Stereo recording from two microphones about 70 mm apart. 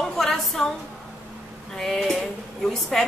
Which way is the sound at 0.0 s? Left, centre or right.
Centre.